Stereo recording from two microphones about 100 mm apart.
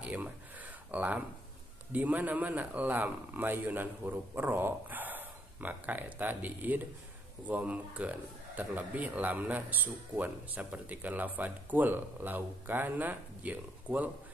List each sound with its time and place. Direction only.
0.0 s speech: 15° right (ahead or behind)